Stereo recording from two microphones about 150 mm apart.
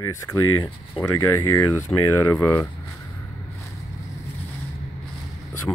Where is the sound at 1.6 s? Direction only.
20° left (ahead or behind).